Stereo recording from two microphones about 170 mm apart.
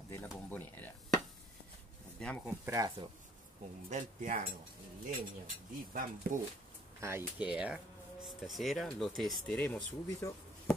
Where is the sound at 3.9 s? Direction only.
50° right (ahead or behind).